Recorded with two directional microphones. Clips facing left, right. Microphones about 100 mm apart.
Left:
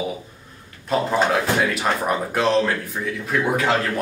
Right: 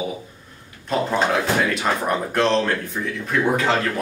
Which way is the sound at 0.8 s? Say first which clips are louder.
Left 1 dB; centre (ahead or behind).